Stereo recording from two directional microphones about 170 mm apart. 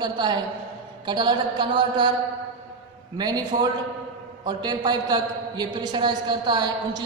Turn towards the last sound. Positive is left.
turn(degrees=-25)  # may be behind; listen again after turning